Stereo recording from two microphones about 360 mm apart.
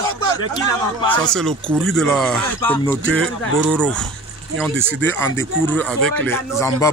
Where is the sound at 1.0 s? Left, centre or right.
Centre.